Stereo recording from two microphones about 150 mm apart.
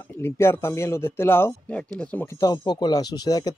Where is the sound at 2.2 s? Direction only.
20° left (ahead or behind).